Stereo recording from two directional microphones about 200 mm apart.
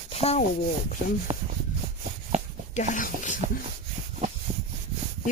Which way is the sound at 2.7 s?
35° left (ahead or behind).